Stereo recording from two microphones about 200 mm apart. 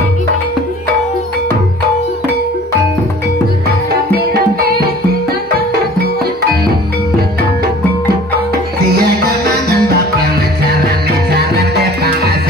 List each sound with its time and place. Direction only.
3.9 s music: 50° right (ahead or behind)
8.9 s music: 50° right (ahead or behind)